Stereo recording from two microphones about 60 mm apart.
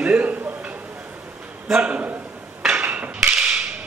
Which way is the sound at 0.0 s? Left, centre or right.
Right.